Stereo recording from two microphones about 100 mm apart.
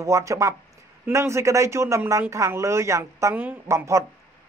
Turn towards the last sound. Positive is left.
turn(degrees=-30)  # may be behind; listen again after turning